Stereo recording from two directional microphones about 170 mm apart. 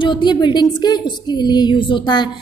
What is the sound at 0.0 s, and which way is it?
A woman's voice, 25° left (ahead or behind).